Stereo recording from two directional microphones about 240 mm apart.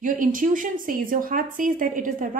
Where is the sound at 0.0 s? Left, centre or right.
Right.